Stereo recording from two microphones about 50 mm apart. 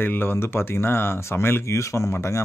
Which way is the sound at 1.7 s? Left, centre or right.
Left.